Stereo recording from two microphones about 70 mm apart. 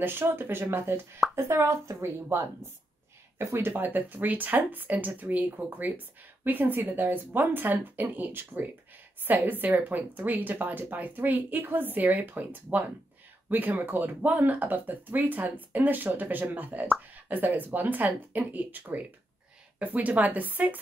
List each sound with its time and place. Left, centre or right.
0.0 s speech: right
13.5 s speech: right